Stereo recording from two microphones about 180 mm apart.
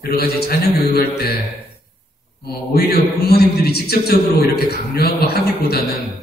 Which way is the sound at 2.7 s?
60° left (ahead or behind).